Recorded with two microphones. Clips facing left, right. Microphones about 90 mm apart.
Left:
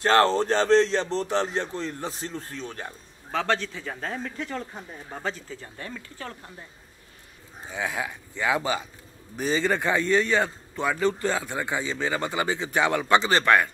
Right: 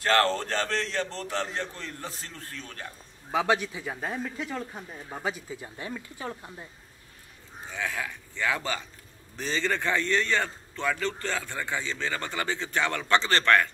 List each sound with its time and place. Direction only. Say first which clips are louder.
0.0 s speech: left 4 dB; 20° left (ahead or behind)
3.3 s speech: right 1 dB; 15° right (ahead or behind)
7.7 s a man's voice: left 3 dB; 15° left (ahead or behind)